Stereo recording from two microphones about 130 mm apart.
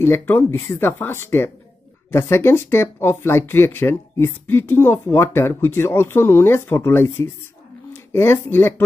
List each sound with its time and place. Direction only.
0.0 s speech: 15° left (ahead or behind)